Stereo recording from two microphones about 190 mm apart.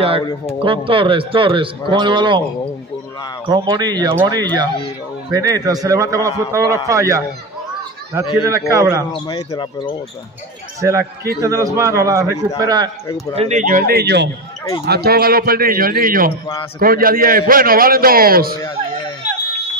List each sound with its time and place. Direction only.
0.7 s a man's voice: 25° right (ahead or behind)
3.4 s a man's voice: 25° right (ahead or behind)
8.4 s a man's voice: 15° right (ahead or behind)
9.1 s speech: 20° left (ahead or behind)
10.8 s a man's voice: 15° right (ahead or behind)
13.4 s a man's voice: 40° right (ahead or behind)